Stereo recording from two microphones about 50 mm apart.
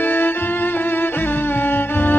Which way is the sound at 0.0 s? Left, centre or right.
Left.